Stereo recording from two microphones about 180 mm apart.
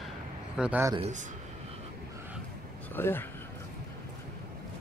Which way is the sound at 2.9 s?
10° left (ahead or behind).